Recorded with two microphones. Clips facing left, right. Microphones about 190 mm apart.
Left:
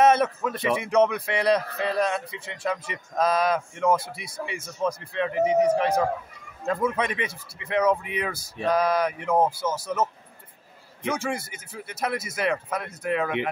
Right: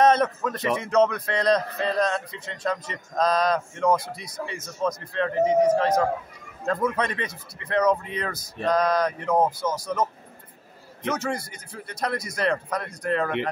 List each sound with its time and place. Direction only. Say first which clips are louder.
0.0 s a man's voice: even; 10° left (ahead or behind)
11.0 s speech: right 1 dB; 10° left (ahead or behind)